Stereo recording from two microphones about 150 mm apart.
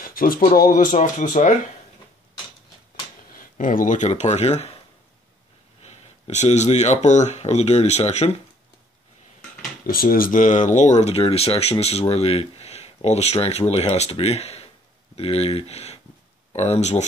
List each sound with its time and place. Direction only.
0.0 s speech: 70° left (ahead or behind)
0.9 s speech: 55° left (ahead or behind)
3.5 s speech: 60° left (ahead or behind); by 4.7 s 45° left (ahead or behind)
5.8 s speech: 45° left (ahead or behind)
9.8 s speech: 75° left (ahead or behind); by 17.0 s 45° left (ahead or behind)